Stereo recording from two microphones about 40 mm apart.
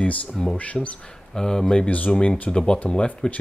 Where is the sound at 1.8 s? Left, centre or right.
Left.